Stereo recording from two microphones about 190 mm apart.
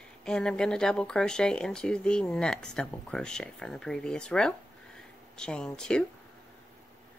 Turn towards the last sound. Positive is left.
turn(degrees=5)  # may be behind; listen again after turning